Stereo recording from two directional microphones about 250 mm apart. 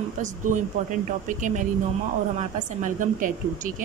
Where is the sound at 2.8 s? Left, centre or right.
Right.